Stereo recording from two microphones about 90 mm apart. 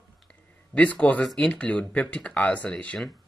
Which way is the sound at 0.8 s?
15° left (ahead or behind).